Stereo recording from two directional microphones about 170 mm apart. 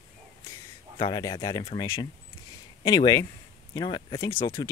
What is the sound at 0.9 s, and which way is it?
Speech, 20° left (ahead or behind).